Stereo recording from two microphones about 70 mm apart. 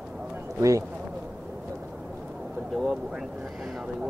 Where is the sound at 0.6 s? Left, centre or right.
Right.